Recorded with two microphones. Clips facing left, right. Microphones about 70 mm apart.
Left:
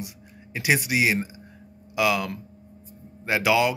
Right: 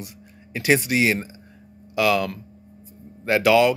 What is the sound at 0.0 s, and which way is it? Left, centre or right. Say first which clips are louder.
Speech: left 1 dB; centre.